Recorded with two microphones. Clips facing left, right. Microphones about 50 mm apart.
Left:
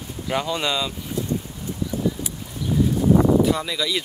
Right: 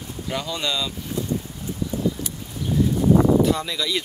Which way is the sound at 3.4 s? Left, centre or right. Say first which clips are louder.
Even; centre.